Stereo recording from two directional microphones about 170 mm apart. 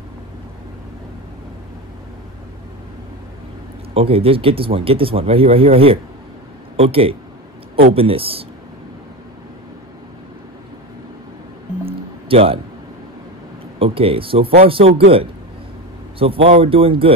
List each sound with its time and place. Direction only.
3.9 s speech: 35° right (ahead or behind)
11.8 s music: 35° right (ahead or behind)
13.7 s speech: 35° right (ahead or behind)
14.4 s speech: 65° right (ahead or behind)
14.7 s speech: 35° right (ahead or behind)